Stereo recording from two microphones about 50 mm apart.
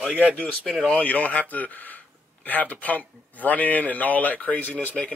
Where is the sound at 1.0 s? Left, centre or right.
Left.